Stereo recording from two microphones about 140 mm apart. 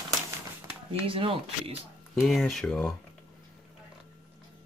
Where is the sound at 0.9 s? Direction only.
40° right (ahead or behind).